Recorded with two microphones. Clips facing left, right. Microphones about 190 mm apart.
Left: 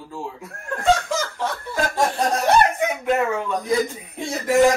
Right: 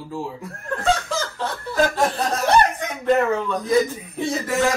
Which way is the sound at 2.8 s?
15° left (ahead or behind).